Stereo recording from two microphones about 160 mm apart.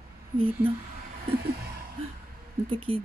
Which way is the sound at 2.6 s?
35° right (ahead or behind).